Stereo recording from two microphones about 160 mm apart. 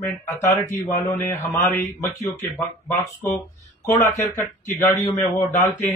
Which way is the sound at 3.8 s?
20° left (ahead or behind).